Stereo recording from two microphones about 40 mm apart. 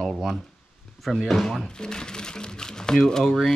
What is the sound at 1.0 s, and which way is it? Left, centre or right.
Speech, centre.